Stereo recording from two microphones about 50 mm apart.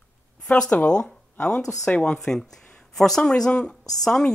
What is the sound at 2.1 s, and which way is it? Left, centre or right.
Speech, centre.